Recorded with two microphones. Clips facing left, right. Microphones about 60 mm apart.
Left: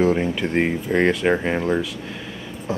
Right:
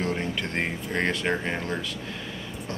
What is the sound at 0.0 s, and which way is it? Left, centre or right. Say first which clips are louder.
Speech: left 9 dB; centre.